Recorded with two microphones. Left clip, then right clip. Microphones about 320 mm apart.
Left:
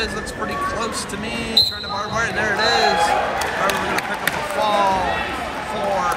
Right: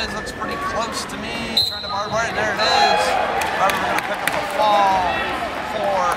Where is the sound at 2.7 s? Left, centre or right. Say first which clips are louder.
Right 2 dB; right.